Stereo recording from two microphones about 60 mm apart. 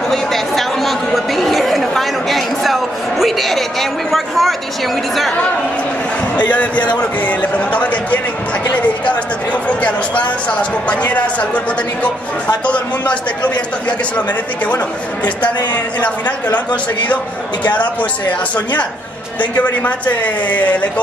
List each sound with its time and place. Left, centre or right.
0.1 s chatter: centre
4.1 s speech: centre
6.3 s a woman's voice: left
15.2 s a woman's voice: left
19.5 s a woman's voice: left